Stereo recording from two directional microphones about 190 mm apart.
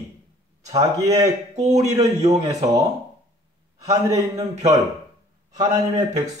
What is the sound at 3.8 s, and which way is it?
Speech, 20° right (ahead or behind).